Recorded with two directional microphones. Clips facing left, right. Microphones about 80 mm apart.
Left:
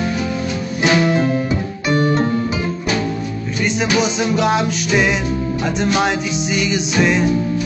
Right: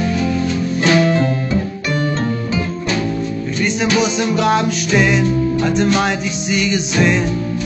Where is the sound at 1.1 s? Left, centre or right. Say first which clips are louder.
Even; centre.